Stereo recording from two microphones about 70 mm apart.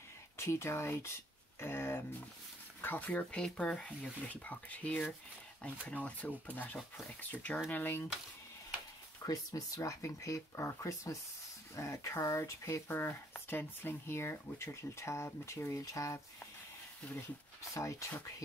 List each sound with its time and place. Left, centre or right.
0.4 s speech: left
1.6 s a sound: left
2.8 s speech: left
3.3 s speech: centre
4.3 s speech: left
9.2 s speech: left
17.7 s speech: left